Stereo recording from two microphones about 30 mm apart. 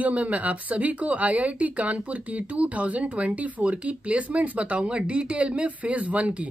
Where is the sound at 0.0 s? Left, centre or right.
Right.